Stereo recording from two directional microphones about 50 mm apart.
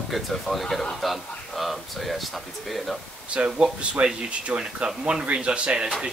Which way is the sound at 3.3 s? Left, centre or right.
Right.